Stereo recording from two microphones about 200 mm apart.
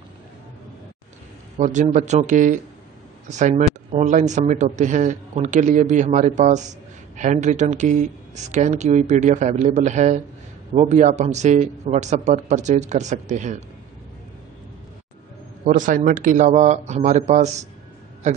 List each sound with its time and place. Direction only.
1.6 s speech: 35° right (ahead or behind)
15.6 s speech: 40° right (ahead or behind)